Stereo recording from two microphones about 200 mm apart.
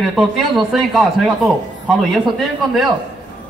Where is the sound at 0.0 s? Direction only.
Centre (ahead or behind).